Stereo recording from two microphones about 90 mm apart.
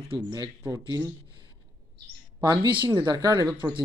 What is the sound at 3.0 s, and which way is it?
Speech, 45° right (ahead or behind).